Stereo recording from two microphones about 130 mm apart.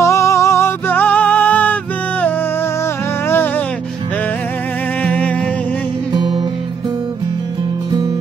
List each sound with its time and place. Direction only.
0.0 s music: 25° left (ahead or behind)
3.3 s music: 15° left (ahead or behind)
5.0 s music: 10° left (ahead or behind)
6.1 s music: 40° right (ahead or behind)